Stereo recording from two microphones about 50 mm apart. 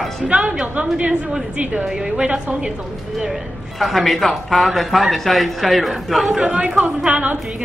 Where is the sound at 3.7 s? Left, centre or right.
Centre.